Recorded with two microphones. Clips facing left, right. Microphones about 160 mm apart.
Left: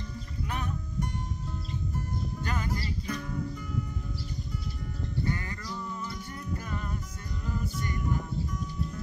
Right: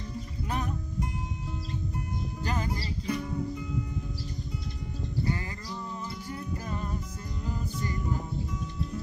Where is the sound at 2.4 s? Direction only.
35° right (ahead or behind).